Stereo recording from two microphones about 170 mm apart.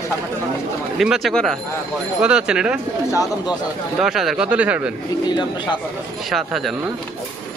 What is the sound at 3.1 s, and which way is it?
Speech, 20° left (ahead or behind).